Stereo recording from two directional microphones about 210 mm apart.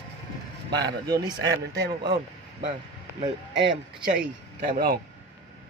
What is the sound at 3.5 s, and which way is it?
Speech, 55° right (ahead or behind).